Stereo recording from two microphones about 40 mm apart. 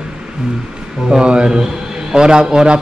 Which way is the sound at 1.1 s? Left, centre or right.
Right.